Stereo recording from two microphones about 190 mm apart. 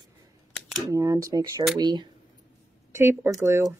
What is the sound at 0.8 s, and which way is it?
Speech, 15° right (ahead or behind).